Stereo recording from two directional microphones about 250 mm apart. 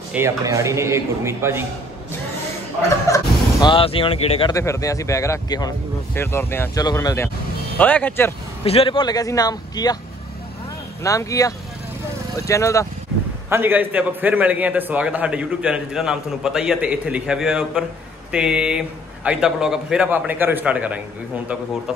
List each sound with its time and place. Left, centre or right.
0.1 s a man's voice: centre
3.1 s a sound: centre
3.6 s speech: left
8.6 s speech: left
11.0 s speech: centre
13.5 s a man's voice: centre